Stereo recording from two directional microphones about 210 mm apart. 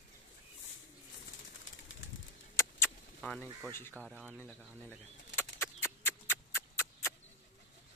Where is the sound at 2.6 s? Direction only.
10° left (ahead or behind).